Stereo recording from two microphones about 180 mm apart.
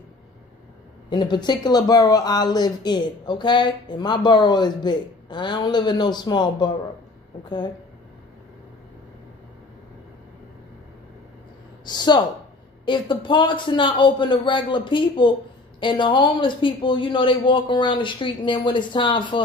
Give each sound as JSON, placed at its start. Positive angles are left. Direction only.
{"t": 1.1, "sound": "speech", "side_deg": 25}
{"t": 11.8, "sound": "speech", "side_deg": 25}